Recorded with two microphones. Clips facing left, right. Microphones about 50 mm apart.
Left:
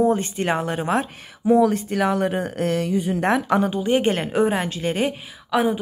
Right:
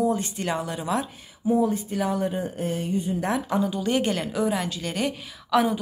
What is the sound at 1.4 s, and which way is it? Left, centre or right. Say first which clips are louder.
Speech: left 6 dB; left.